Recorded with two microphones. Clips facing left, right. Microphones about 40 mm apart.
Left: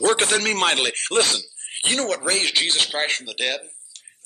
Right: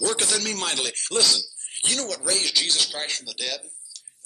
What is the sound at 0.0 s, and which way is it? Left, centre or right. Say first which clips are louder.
A man's voice: left 7 dB; left.